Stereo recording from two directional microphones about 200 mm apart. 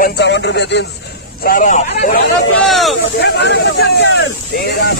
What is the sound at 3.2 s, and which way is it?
Speech, 60° left (ahead or behind).